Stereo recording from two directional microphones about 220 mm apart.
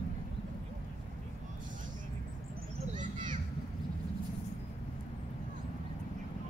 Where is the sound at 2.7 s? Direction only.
35° right (ahead or behind).